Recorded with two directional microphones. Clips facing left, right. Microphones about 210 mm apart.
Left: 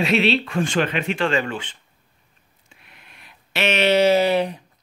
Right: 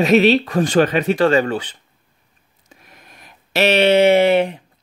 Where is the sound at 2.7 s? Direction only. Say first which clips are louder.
Right 6 dB; 40° right (ahead or behind); by 4.6 s 25° right (ahead or behind).